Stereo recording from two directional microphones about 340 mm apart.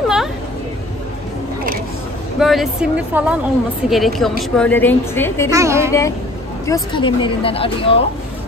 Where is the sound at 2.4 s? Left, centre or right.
Centre.